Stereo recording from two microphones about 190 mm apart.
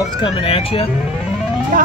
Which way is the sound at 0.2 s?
30° left (ahead or behind).